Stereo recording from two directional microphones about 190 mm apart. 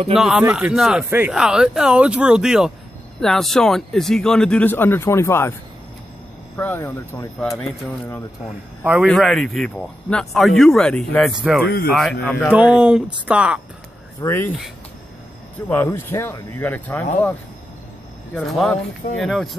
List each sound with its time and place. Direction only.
0.1 s speech: centre (ahead or behind)
12.5 s speech: 5° right (ahead or behind)
14.2 s speech: 10° left (ahead or behind)
15.7 s speech: 10° left (ahead or behind)
18.3 s speech: centre (ahead or behind)